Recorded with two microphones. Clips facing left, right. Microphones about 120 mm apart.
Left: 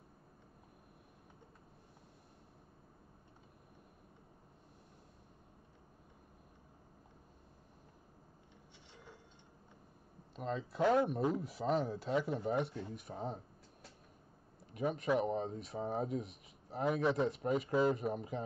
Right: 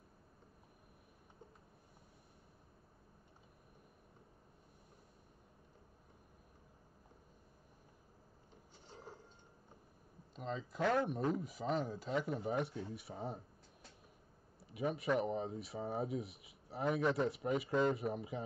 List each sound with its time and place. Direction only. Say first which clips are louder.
8.9 s a sound: right 4 dB; 40° right (ahead or behind)
10.3 s speech: left 3 dB; centre (ahead or behind)
10.8 s speech: left 4 dB; 15° left (ahead or behind)
11.1 s speech: left 2 dB; 5° left (ahead or behind)
14.7 s speech: left 2 dB; 5° right (ahead or behind)